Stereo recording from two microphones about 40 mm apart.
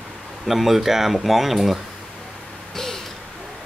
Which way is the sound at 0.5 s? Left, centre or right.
Centre.